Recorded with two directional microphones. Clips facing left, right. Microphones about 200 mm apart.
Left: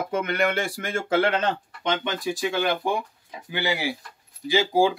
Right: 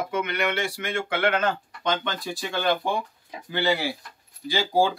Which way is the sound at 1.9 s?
15° left (ahead or behind).